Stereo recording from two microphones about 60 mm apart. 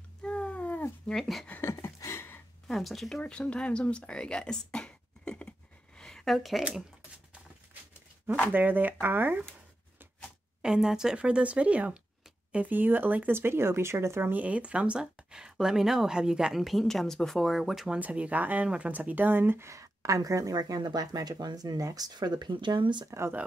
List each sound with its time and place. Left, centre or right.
0.2 s cat: centre
1.0 s speech: centre
1.6 s a sound: left
2.0 s a sound: left
2.7 s speech: centre
3.2 s speech: centre
5.9 s a sound: centre
8.5 s speech: right
10.6 s speech: centre; by 14.3 s right
14.3 s speech: right; by 17.9 s centre
17.9 s speech: right
19.7 s speech: right
23.1 s speech: right